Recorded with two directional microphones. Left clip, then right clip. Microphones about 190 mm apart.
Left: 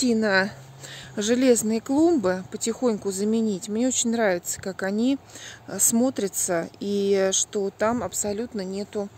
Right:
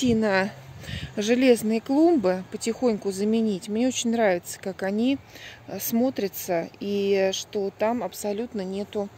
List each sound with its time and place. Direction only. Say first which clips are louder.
0.1 s a woman's voice: left 2 dB; centre (ahead or behind); by 7.9 s 20° left (ahead or behind)
7.9 s speech: left 1 dB; 5° left (ahead or behind)